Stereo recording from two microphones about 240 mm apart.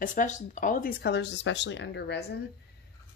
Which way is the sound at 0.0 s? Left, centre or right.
Left.